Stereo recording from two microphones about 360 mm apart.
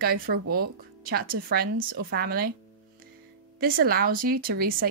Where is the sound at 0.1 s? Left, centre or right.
Right.